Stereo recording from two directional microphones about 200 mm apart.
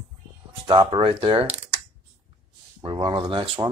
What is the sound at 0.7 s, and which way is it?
Speech, 25° right (ahead or behind).